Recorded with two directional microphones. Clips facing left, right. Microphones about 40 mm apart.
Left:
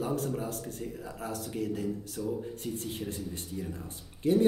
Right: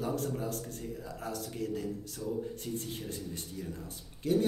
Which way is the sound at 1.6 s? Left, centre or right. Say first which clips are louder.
Left 5 dB; left.